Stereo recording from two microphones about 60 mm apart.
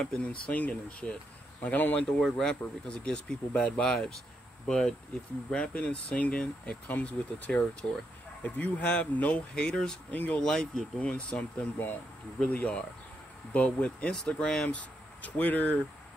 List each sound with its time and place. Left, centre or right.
0.0 s speech: centre
2.2 s speech: centre
10.1 s speech: left
10.4 s speech: centre
11.5 s speech: left
12.4 s speech: left
14.7 s speech: left